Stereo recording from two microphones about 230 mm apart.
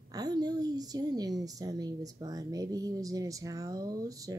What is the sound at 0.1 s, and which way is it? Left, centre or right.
A woman's voice, centre.